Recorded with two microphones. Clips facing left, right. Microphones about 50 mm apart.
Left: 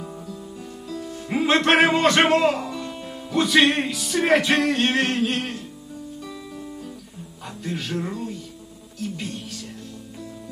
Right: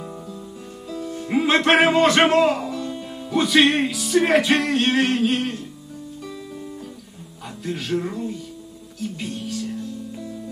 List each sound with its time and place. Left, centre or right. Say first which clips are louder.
0.8 s music: right 3 dB; centre
7.6 s music: right 1 dB; centre
8.0 s speech: right 2 dB; centre
9.0 s music: right 2 dB; centre